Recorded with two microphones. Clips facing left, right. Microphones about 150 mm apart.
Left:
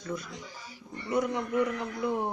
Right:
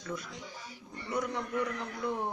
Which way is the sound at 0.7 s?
5° left (ahead or behind).